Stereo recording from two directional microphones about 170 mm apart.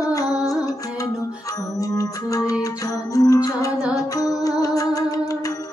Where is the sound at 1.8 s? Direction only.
20° left (ahead or behind).